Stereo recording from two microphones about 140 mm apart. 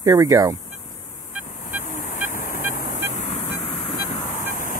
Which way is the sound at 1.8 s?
60° left (ahead or behind).